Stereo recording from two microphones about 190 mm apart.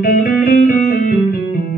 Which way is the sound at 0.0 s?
45° left (ahead or behind).